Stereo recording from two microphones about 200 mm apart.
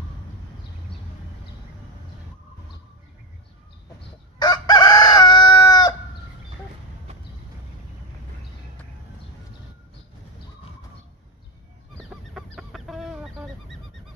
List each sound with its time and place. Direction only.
4.4 s chicken: 20° left (ahead or behind)
7.1 s a sound: 30° right (ahead or behind)
12.4 s chicken: centre (ahead or behind)